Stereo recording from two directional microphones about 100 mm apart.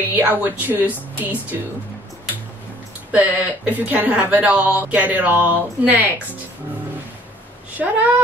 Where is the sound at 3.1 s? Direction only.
15° right (ahead or behind).